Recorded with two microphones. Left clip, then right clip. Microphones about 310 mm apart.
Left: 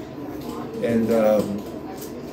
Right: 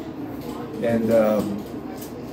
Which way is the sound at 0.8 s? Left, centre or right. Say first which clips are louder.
Even; centre.